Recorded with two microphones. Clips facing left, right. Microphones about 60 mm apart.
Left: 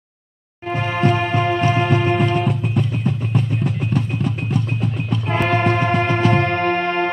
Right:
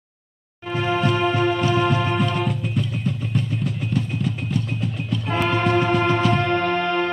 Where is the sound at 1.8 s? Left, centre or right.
Left.